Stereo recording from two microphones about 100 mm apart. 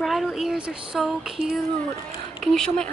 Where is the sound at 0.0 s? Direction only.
Centre (ahead or behind).